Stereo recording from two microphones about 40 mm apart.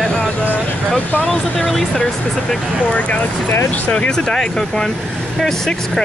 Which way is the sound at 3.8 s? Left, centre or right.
Left.